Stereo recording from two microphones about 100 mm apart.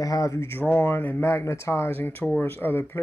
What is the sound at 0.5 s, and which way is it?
Speech, 20° left (ahead or behind).